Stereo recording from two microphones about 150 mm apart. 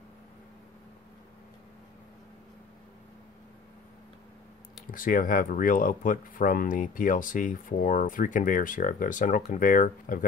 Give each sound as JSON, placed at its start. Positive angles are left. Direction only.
{"t": 4.9, "sound": "speech", "side_deg": 65}